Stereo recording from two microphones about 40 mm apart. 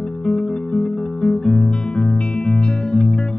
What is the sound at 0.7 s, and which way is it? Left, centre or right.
Music, left.